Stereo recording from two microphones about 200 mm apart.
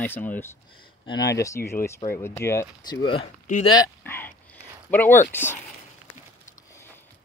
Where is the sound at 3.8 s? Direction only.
10° left (ahead or behind).